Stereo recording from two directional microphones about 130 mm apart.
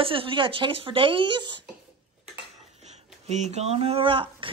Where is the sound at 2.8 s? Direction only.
60° right (ahead or behind); by 4.5 s 40° right (ahead or behind).